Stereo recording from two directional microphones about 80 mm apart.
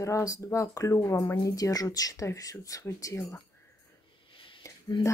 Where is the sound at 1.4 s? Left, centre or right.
Left.